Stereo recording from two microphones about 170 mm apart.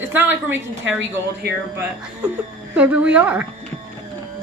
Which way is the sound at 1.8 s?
10° right (ahead or behind).